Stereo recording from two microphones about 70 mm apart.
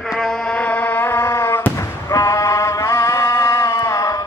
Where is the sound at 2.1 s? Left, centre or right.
Left.